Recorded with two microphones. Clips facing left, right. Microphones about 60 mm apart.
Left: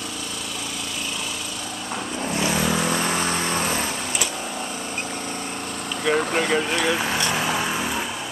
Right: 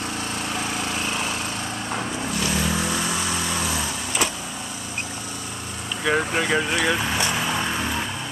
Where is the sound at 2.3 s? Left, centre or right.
Left.